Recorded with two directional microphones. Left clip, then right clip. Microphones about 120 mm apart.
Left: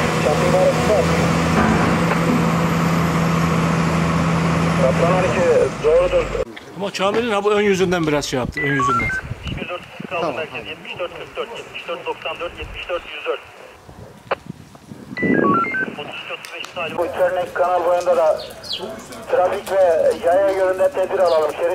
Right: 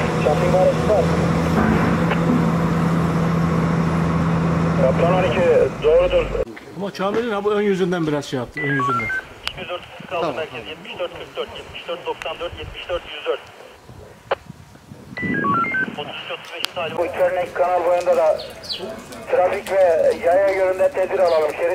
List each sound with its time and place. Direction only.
0.2 s speech: 20° left (ahead or behind)
1.3 s vehicle: 20° left (ahead or behind)
1.6 s vehicle: 50° left (ahead or behind)
4.7 s speech: 25° left (ahead or behind)
15.4 s speech: 15° left (ahead or behind)
19.5 s speech: 10° left (ahead or behind)